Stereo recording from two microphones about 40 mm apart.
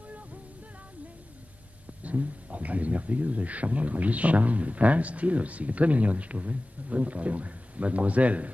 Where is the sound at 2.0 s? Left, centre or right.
Right.